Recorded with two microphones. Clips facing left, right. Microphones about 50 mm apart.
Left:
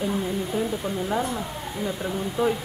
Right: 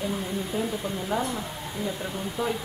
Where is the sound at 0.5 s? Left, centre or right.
Centre.